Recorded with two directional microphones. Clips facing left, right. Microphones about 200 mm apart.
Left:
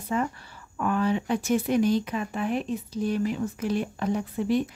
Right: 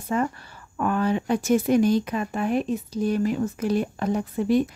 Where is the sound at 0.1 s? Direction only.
50° right (ahead or behind).